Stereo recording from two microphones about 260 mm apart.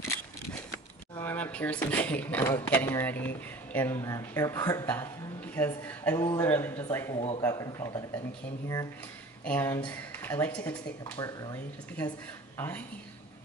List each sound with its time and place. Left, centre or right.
1.1 s speech: centre
7.2 s speech: left
9.4 s a woman's voice: centre